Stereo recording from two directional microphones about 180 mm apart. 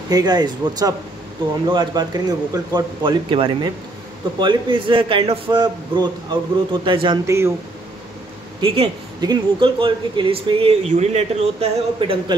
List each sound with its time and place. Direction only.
0.1 s speech: 20° right (ahead or behind)
7.2 s speech: 15° right (ahead or behind)
8.5 s speech: 30° right (ahead or behind)